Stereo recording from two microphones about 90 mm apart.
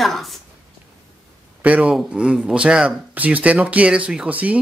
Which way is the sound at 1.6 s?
15° right (ahead or behind).